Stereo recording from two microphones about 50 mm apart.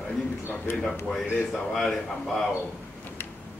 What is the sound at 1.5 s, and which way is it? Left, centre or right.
Speech, centre.